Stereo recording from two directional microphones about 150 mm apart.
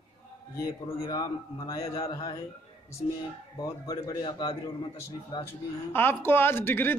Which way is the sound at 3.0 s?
50° left (ahead or behind).